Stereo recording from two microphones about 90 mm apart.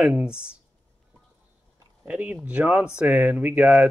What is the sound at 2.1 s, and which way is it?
Speech, 15° right (ahead or behind).